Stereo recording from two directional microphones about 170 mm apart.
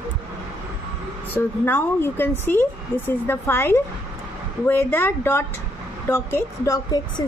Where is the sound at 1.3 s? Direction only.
10° left (ahead or behind).